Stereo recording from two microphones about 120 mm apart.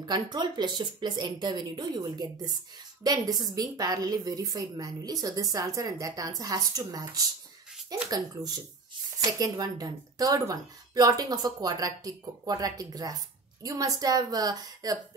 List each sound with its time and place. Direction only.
0.0 s speech: 35° right (ahead or behind)
9.2 s speech: 30° right (ahead or behind)